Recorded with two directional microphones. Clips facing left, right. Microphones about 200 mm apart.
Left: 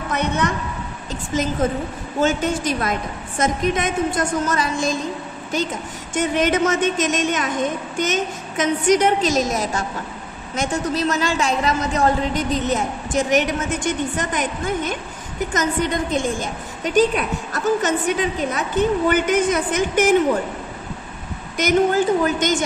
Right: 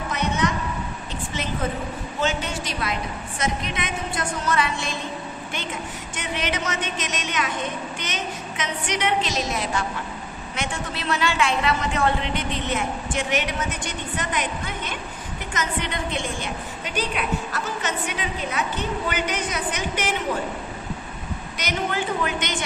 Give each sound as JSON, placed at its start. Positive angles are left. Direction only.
{"t": 0.1, "sound": "a sound", "side_deg": 55}
{"t": 1.3, "sound": "a woman's voice", "side_deg": 40}
{"t": 6.1, "sound": "a woman's voice", "side_deg": 45}
{"t": 21.5, "sound": "a woman's voice", "side_deg": 45}